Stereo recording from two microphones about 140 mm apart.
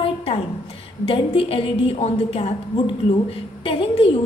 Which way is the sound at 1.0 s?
40° left (ahead or behind).